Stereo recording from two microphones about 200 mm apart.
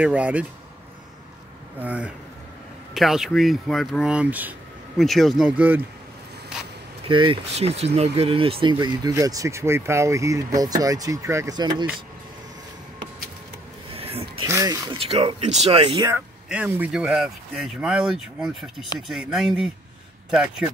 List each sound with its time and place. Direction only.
0.0 s speech: 5° right (ahead or behind)
1.8 s speech: 5° right (ahead or behind)
7.1 s speech: 25° right (ahead or behind)
13.9 s a sound: 30° right (ahead or behind)
14.4 s speech: 15° right (ahead or behind)
16.1 s speech: 5° right (ahead or behind)